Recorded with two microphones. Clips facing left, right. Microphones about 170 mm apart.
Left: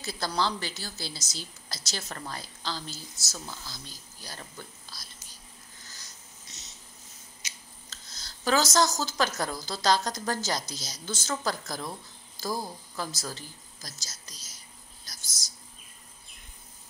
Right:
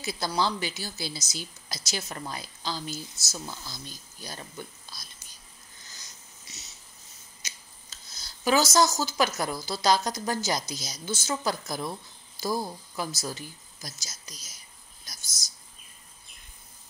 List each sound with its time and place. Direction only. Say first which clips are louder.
0.0 s a woman's voice: right 2 dB; 10° right (ahead or behind)
5.9 s wheeze: even; 10° right (ahead or behind)
7.9 s a woman's voice: right 1 dB; 10° right (ahead or behind)
15.2 s speech: even; 10° left (ahead or behind)